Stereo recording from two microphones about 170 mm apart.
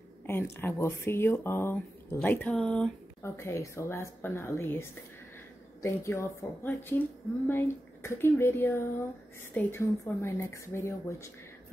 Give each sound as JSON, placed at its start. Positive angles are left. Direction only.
{"t": 0.3, "sound": "speech", "side_deg": 15}
{"t": 3.3, "sound": "speech", "side_deg": 15}